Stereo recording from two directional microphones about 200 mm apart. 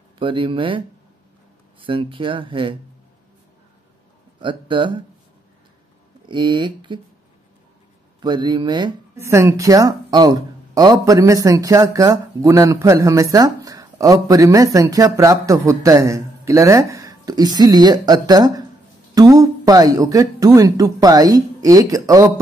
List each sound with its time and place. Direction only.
0.2 s speech: 25° right (ahead or behind)
4.4 s speech: 25° right (ahead or behind)
6.2 s speech: 25° right (ahead or behind)
8.2 s speech: 25° right (ahead or behind)